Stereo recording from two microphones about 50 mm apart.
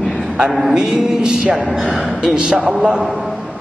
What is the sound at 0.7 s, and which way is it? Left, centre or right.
A man's voice, centre.